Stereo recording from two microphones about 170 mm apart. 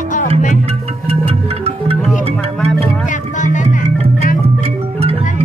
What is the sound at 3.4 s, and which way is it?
Music, 50° left (ahead or behind).